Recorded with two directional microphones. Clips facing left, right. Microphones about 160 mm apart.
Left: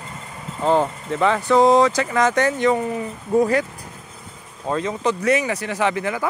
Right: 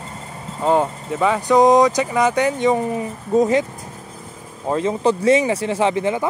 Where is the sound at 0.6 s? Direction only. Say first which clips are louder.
Right 1 dB; 5° right (ahead or behind).